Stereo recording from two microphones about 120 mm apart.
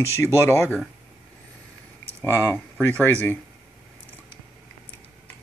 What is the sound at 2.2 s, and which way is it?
Speech, 20° left (ahead or behind).